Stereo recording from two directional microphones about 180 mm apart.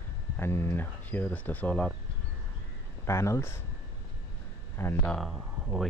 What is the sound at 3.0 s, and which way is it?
Speech, 15° left (ahead or behind).